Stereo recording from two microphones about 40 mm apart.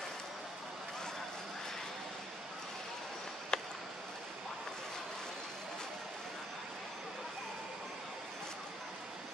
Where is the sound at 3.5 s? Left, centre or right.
Centre.